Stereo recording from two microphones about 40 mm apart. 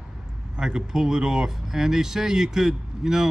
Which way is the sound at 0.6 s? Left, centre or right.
Centre.